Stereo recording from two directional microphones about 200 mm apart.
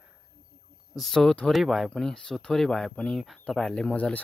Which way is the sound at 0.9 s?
Centre (ahead or behind).